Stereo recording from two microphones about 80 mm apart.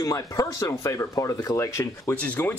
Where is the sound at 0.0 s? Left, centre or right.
Left.